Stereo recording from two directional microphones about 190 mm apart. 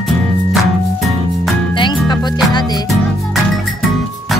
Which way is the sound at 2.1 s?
20° left (ahead or behind).